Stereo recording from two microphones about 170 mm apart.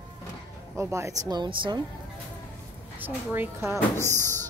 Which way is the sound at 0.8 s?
15° right (ahead or behind).